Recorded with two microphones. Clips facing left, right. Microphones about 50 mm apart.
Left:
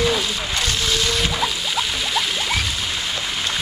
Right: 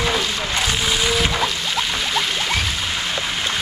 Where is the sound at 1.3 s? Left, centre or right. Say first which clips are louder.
Right 1 dB; centre.